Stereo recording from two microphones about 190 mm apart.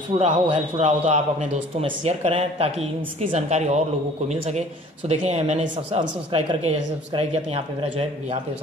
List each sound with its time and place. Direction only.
0.1 s speech: 25° right (ahead or behind)